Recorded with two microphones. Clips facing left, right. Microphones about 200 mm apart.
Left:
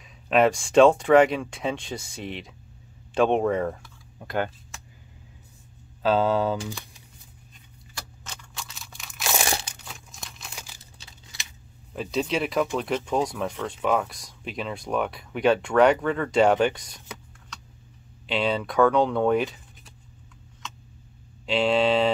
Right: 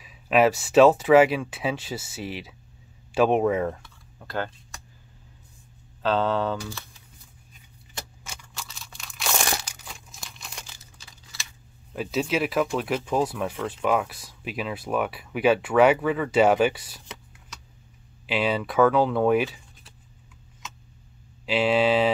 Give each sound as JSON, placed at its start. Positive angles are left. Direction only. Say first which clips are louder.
{"t": 0.0, "sound": "speech", "louder": "even", "side_deg": -5}
{"t": 4.2, "sound": "speech", "louder": "left 3 dB", "side_deg": 15}
{"t": 6.0, "sound": "speech", "louder": "left 2 dB", "side_deg": 10}
{"t": 8.2, "sound": "a sound", "louder": "even", "side_deg": -10}
{"t": 9.8, "sound": "crumpling", "louder": "left 1 dB", "side_deg": 0}
{"t": 11.9, "sound": "speech", "louder": "right 1 dB", "side_deg": -5}
{"t": 18.2, "sound": "speech", "louder": "even", "side_deg": -5}
{"t": 21.5, "sound": "speech", "louder": "even", "side_deg": -5}